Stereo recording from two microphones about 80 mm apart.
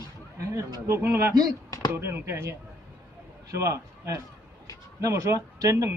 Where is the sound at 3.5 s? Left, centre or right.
Right.